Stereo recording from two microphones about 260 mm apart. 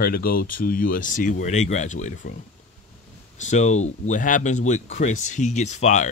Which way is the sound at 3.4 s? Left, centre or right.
Left.